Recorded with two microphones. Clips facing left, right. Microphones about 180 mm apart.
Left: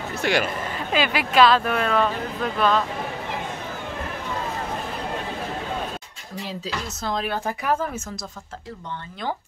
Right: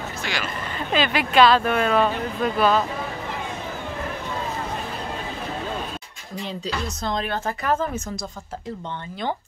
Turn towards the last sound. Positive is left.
turn(degrees=5)  # may be behind; listen again after turning